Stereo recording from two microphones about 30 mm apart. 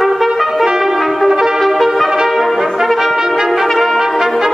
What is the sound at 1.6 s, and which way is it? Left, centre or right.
Brass instrument, centre.